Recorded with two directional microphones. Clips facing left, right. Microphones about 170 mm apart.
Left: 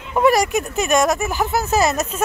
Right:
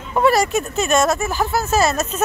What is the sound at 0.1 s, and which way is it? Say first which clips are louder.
Speech: even; 15° left (ahead or behind).